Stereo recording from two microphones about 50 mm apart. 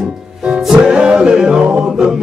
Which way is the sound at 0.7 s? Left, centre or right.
Centre.